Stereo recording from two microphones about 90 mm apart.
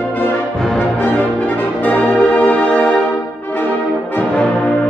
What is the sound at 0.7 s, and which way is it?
Music, 15° left (ahead or behind).